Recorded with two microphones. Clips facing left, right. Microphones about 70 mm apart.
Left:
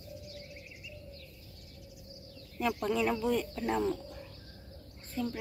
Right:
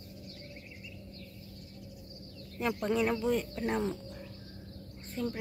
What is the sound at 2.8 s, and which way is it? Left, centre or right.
Speech, right.